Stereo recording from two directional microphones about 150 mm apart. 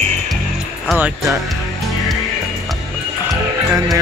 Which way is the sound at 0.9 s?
15° right (ahead or behind).